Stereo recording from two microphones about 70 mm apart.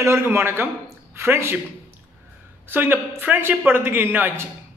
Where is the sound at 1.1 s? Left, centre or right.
Right.